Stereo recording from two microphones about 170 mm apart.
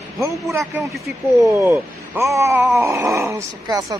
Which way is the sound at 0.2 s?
15° right (ahead or behind).